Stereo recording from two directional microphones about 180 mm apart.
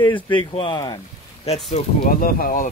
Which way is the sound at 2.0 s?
55° left (ahead or behind).